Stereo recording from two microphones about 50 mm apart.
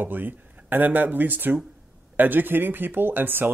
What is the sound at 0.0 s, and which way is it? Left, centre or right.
Speech, right.